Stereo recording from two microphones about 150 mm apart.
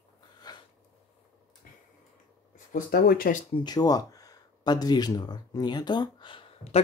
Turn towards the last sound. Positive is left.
turn(degrees=40)  # may be behind; listen again after turning